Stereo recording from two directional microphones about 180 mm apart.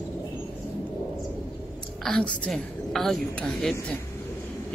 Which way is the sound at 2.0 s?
5° left (ahead or behind).